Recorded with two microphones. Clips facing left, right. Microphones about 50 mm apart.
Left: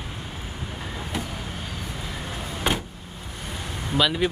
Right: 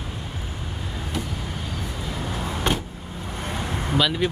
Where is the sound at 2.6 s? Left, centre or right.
Centre.